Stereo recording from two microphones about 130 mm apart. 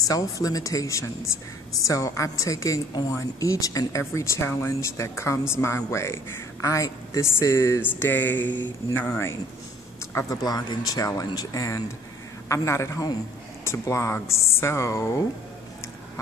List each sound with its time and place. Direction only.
0.1 s speech: 25° left (ahead or behind)
10.1 s speech: 30° left (ahead or behind)